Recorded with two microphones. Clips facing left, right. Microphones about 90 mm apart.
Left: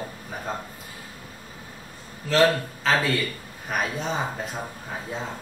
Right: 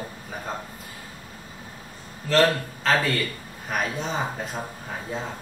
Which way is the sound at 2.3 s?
Centre (ahead or behind).